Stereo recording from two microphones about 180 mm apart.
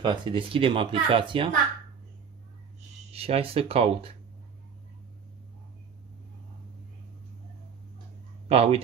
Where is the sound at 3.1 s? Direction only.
35° right (ahead or behind).